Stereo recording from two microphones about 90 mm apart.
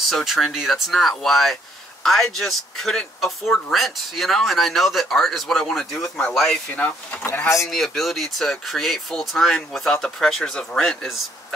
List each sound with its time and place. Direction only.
0.1 s speech: centre (ahead or behind)
6.7 s speech: 20° left (ahead or behind)
7.6 s speech: 5° left (ahead or behind)